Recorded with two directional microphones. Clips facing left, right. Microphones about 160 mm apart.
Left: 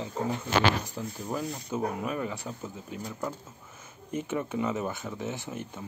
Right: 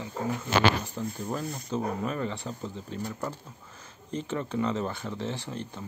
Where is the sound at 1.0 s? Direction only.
5° left (ahead or behind).